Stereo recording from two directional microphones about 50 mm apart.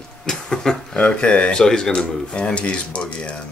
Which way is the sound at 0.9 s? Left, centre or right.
Left.